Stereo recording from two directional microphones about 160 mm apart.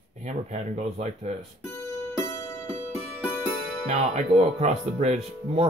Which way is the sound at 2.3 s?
20° left (ahead or behind).